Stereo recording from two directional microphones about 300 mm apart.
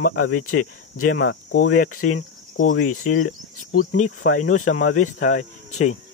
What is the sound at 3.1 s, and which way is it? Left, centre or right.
Speech, left.